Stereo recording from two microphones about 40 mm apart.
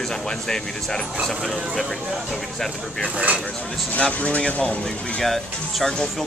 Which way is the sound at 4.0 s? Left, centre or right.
Left.